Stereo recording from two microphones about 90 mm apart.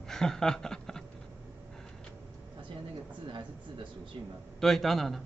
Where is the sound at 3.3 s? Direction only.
65° right (ahead or behind).